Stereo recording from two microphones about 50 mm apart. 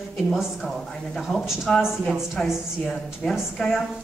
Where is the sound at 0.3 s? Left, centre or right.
Centre.